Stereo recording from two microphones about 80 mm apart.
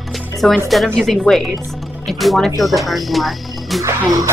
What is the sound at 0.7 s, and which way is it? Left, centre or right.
Speech, centre.